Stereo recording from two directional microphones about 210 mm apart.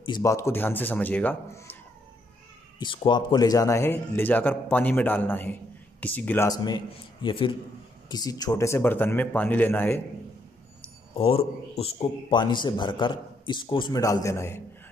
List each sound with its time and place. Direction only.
0.0 s speech: 20° left (ahead or behind)
2.8 s a man's voice: 20° left (ahead or behind)
11.1 s a man's voice: 25° left (ahead or behind)